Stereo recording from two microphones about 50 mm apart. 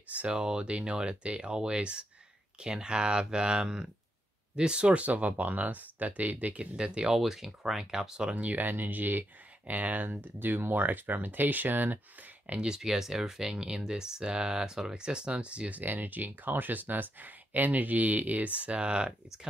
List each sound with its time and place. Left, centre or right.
0.1 s speech: right
7.2 s speech: centre
8.5 s speech: right
12.5 s speech: centre
15.8 s speech: right